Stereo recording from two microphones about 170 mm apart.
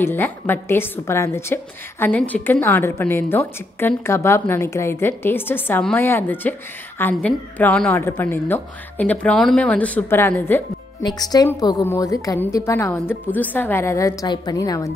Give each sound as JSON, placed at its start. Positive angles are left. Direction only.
{"t": 0.0, "sound": "a woman's voice", "side_deg": 10}
{"t": 11.0, "sound": "a woman's voice", "side_deg": 25}